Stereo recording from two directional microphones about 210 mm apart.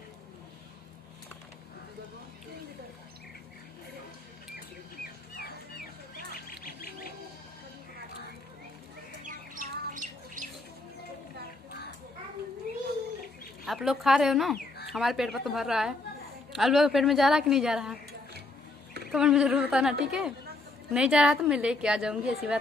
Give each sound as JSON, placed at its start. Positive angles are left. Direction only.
{"t": 6.1, "sound": "duck", "side_deg": 45}
{"t": 9.2, "sound": "squawk", "side_deg": -40}
{"t": 13.7, "sound": "a woman's voice", "side_deg": 0}
{"t": 19.1, "sound": "a woman's voice", "side_deg": -5}